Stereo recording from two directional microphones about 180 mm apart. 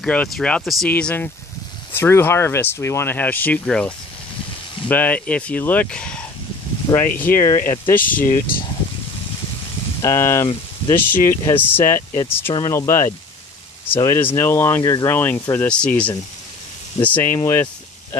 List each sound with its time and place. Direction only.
0.0 s speech: 5° left (ahead or behind)
7.1 s speech: 50° left (ahead or behind)
7.3 s speech: 15° left (ahead or behind)
8.0 s speech: 50° left (ahead or behind)
10.0 s speech: 15° left (ahead or behind)